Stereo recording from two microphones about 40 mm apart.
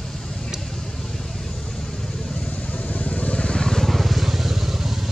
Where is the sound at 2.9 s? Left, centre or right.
Left; by 3.9 s centre.